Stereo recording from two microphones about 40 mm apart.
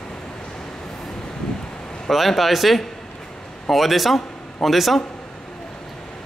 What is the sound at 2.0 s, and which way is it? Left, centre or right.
A man's voice, centre.